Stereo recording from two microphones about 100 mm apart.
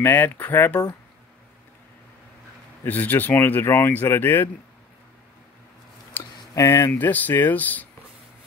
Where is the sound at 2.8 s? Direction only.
15° left (ahead or behind).